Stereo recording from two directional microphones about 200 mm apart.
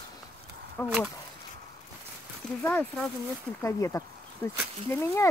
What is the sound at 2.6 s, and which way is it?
Speech, 10° left (ahead or behind).